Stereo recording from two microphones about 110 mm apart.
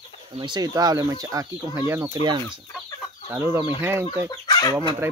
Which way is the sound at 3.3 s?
20° right (ahead or behind).